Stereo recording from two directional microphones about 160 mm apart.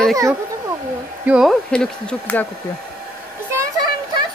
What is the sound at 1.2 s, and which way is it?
Speech, 5° right (ahead or behind).